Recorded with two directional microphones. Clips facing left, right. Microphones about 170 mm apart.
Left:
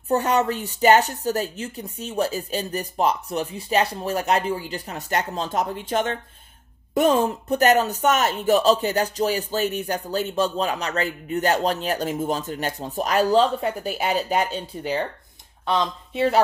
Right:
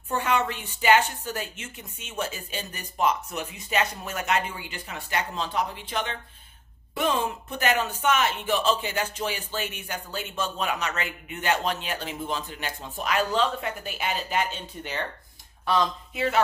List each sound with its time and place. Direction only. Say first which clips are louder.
0.1 s speech: left 5 dB; 40° left (ahead or behind)
16.1 s speech: left 6 dB; 30° left (ahead or behind)